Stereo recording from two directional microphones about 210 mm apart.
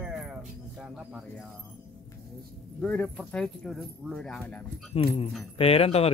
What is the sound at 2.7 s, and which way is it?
Speech, 5° left (ahead or behind).